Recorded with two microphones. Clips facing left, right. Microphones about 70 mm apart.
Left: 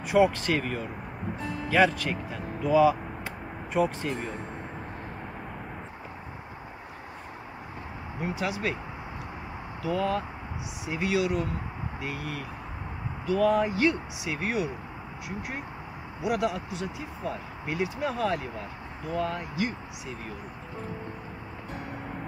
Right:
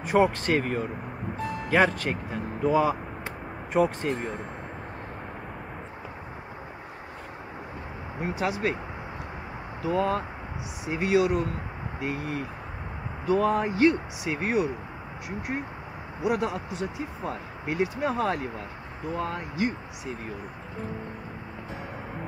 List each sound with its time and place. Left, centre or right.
0.1 s speech: right
8.2 s speech: right
9.8 s speech: right
16.3 s speech: right